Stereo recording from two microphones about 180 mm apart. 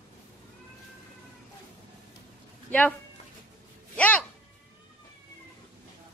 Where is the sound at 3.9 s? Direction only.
5° left (ahead or behind).